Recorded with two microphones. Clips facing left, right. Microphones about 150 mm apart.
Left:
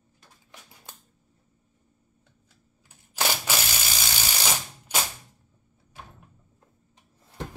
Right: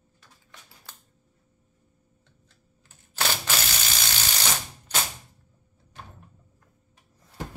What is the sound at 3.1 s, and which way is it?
Typewriter, 10° left (ahead or behind).